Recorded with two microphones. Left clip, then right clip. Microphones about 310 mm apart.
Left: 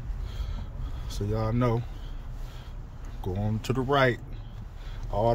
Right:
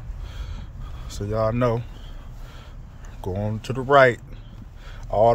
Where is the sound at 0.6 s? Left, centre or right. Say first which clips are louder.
Right 1 dB; centre.